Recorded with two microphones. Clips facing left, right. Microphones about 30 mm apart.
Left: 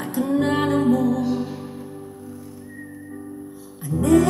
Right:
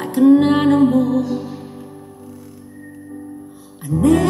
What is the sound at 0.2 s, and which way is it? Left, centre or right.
Music, right.